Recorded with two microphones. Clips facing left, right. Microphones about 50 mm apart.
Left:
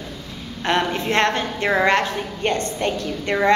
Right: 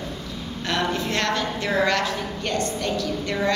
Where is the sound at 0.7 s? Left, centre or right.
Left.